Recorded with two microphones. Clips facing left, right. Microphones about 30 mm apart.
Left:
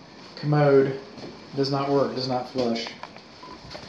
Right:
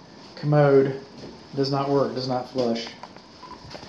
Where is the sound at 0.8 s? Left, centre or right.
Centre.